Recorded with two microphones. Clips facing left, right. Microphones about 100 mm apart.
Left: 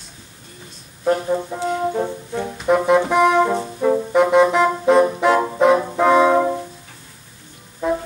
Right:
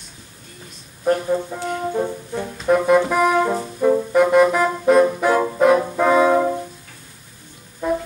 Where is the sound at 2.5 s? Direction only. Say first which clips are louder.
Even; 15° left (ahead or behind).